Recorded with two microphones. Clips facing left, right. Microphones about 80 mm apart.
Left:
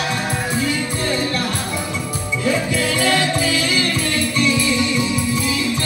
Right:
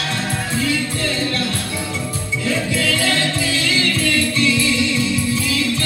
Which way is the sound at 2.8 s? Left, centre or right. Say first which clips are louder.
Left 2 dB; centre.